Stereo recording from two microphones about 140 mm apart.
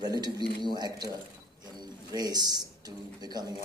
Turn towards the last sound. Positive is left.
turn(degrees=-30)  # may be behind; listen again after turning